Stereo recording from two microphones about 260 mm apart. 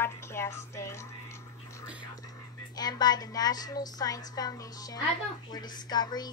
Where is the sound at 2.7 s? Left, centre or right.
Centre.